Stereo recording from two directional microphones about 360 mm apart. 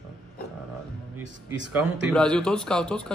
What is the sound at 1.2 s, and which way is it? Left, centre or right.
Speech, right.